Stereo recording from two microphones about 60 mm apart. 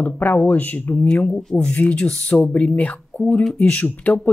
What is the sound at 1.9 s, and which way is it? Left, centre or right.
Speech, centre.